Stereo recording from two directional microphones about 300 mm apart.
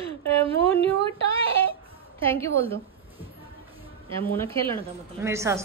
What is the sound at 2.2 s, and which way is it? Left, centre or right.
Speech, centre.